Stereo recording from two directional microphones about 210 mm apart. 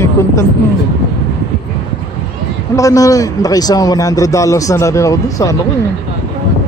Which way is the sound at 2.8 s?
15° left (ahead or behind).